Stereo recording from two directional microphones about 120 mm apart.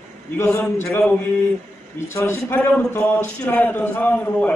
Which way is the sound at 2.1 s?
20° left (ahead or behind).